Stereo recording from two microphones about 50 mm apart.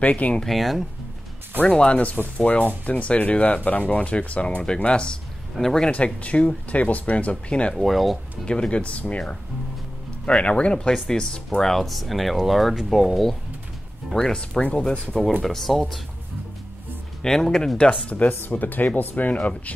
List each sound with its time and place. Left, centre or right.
0.0 s speech: left
0.5 s speech: centre
1.8 s speech: left
5.6 s speech: centre
5.9 s speech: left
7.7 s speech: centre
8.5 s speech: left
10.2 s speech: centre
11.7 s speech: centre
14.1 s speech: centre
15.4 s speech: centre
17.2 s speech: centre
17.7 s speech: centre
18.4 s speech: left